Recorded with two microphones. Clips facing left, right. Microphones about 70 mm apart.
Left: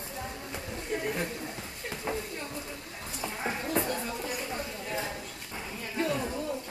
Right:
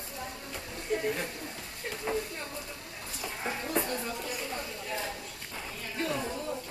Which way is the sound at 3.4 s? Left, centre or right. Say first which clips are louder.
Left 1 dB; centre.